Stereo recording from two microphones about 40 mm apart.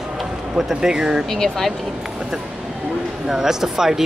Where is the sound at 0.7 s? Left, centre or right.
Centre.